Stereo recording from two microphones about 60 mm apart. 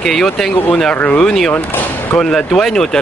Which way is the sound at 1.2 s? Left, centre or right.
Centre.